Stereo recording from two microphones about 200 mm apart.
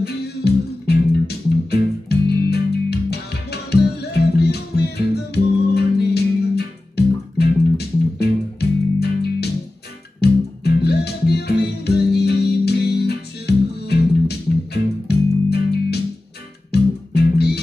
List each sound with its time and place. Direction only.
0.0 s music: 55° left (ahead or behind)